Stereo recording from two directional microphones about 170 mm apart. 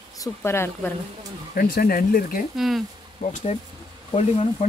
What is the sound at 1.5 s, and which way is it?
Speech, 60° left (ahead or behind).